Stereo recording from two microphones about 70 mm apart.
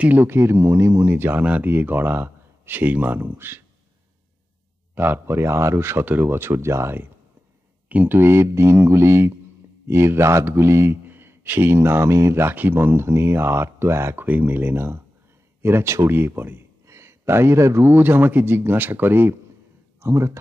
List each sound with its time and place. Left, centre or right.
0.0 s speech: right
0.3 s speech: right
4.9 s speech: right
7.9 s speech: right
16.8 s a sound: right
17.9 s speech: right
20.0 s speech: right